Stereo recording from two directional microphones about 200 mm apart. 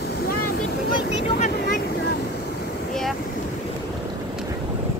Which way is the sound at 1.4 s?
45° left (ahead or behind).